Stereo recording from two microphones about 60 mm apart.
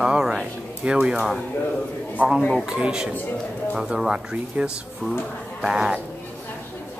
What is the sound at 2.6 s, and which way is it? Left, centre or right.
Speech, centre.